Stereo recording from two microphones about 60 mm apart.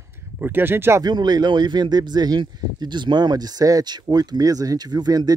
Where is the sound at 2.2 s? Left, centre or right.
Right.